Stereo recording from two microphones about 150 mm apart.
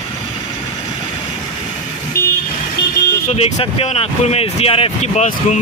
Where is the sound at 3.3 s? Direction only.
45° left (ahead or behind).